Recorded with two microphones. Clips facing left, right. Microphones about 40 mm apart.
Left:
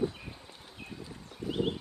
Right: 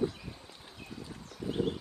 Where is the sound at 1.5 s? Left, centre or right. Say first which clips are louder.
Left 1 dB; left.